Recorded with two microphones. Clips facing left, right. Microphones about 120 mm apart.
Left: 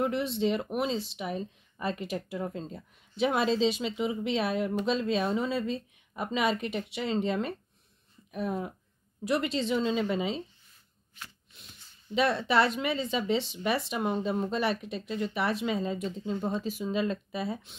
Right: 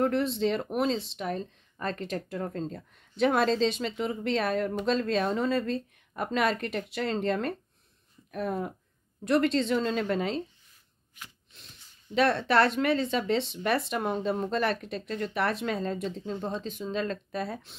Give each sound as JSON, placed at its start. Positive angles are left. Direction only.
{"t": 0.0, "sound": "speech", "side_deg": 0}
{"t": 11.5, "sound": "speech", "side_deg": 5}